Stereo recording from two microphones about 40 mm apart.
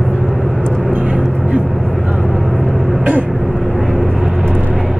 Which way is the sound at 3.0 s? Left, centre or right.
Right.